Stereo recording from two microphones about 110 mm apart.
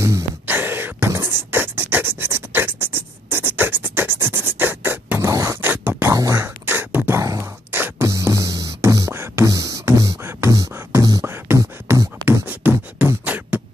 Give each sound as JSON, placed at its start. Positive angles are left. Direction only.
{"t": 0.5, "sound": "beatboxing", "side_deg": -20}
{"t": 5.2, "sound": "beatboxing", "side_deg": -30}